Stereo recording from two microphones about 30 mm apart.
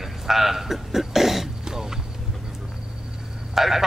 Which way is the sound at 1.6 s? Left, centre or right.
Centre.